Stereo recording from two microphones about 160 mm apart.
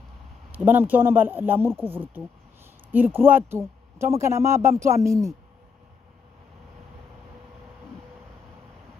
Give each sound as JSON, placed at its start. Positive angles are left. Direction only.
{"t": 0.5, "sound": "speech", "side_deg": -10}